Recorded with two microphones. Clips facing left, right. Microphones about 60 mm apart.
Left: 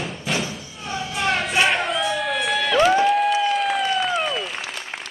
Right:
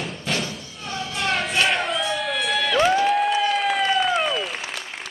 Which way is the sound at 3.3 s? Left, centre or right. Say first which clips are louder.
Left 1 dB; centre.